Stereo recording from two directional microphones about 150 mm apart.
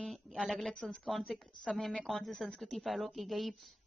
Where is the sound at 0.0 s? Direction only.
Centre (ahead or behind).